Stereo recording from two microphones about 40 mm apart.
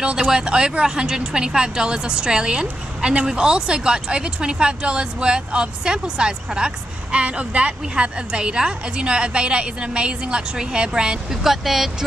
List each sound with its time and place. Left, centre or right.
0.0 s speech: right
11.4 s speech: centre